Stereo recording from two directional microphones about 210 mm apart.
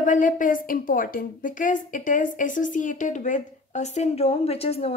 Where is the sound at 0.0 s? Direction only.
40° left (ahead or behind).